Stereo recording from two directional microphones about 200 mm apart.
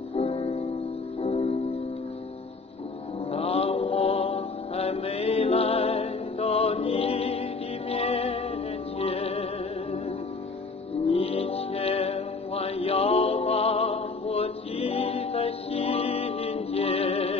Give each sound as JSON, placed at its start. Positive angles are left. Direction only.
{"t": 0.1, "sound": "music", "side_deg": 30}
{"t": 3.3, "sound": "mantra", "side_deg": 30}
{"t": 7.9, "sound": "music", "side_deg": 30}
{"t": 11.1, "sound": "music", "side_deg": 30}